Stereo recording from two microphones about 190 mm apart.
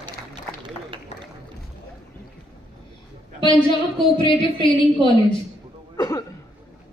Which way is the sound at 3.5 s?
25° left (ahead or behind).